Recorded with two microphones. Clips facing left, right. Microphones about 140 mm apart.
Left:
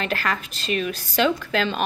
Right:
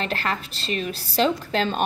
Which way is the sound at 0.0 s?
30° right (ahead or behind).